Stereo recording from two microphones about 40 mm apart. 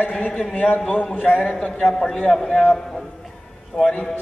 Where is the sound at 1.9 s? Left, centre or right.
Centre.